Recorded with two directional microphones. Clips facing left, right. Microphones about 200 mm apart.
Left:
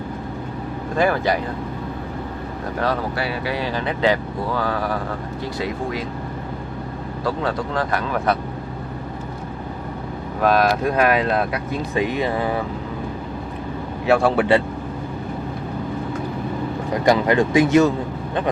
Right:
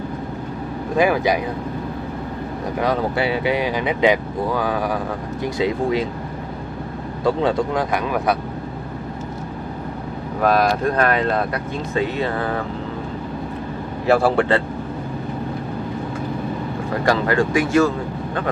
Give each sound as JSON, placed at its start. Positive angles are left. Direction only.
{"t": 0.9, "sound": "speech", "side_deg": -10}
{"t": 2.8, "sound": "speech", "side_deg": -20}
{"t": 7.2, "sound": "speech", "side_deg": -20}
{"t": 10.4, "sound": "speech", "side_deg": 0}
{"t": 11.9, "sound": "speech", "side_deg": 15}
{"t": 14.0, "sound": "speech", "side_deg": 0}
{"t": 16.9, "sound": "speech", "side_deg": 15}